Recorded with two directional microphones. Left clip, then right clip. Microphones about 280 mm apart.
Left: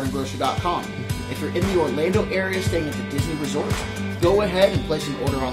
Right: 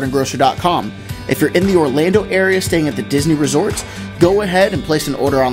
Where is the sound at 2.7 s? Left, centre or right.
Right.